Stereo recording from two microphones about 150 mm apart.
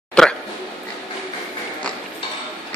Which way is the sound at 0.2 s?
5° left (ahead or behind).